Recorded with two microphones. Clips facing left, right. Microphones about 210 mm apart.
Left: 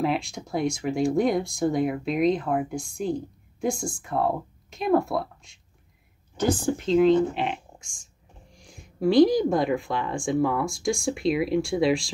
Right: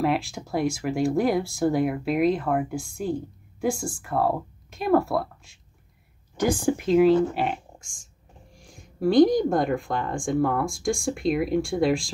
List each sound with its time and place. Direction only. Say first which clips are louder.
0.0 s speech: right 1 dB; centre (ahead or behind)